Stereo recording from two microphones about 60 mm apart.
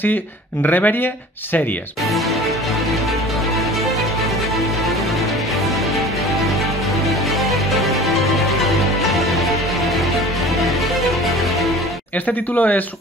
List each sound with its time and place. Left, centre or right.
0.7 s speech: left
8.3 s music: centre
12.3 s speech: left